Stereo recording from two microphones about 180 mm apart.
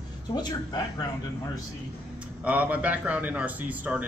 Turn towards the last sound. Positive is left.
turn(degrees=-10)  # may be behind; listen again after turning